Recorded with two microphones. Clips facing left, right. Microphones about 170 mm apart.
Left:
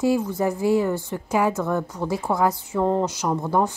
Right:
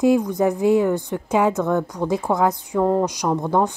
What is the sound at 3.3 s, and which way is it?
Speech, 15° right (ahead or behind).